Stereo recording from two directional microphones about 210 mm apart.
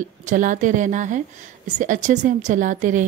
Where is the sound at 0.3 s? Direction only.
35° right (ahead or behind).